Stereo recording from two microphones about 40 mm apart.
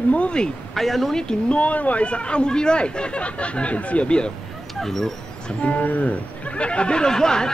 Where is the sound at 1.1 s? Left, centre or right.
Left.